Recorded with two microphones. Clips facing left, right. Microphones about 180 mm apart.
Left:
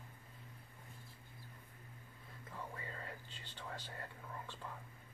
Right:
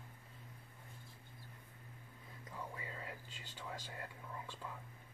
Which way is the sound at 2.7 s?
10° right (ahead or behind).